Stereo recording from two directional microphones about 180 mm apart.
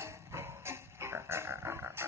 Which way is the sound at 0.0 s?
15° right (ahead or behind).